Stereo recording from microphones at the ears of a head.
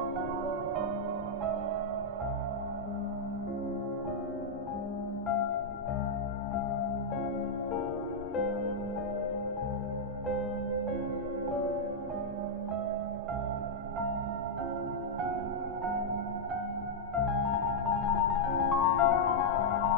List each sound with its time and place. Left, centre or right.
17.2 s music: left